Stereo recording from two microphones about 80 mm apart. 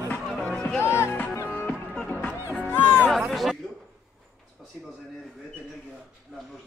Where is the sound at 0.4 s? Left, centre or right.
Centre.